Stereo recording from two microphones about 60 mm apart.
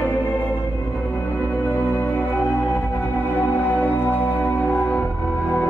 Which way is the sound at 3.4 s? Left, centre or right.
Left.